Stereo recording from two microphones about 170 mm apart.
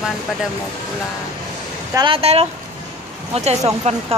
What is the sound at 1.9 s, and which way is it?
Speech, 30° right (ahead or behind).